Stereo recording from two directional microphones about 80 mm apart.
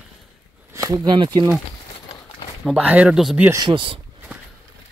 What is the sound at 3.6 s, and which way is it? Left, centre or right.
Speech, right.